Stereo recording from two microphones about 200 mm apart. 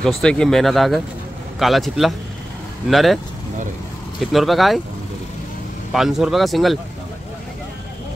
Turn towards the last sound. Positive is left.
turn(degrees=0)  # may be behind; listen again after turning